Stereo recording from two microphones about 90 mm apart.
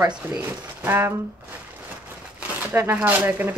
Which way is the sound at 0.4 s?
25° right (ahead or behind).